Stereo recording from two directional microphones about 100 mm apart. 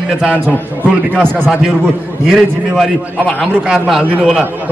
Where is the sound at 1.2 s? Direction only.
20° right (ahead or behind).